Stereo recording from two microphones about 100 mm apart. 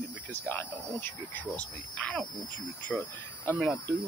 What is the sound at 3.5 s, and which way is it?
Speech, 20° left (ahead or behind).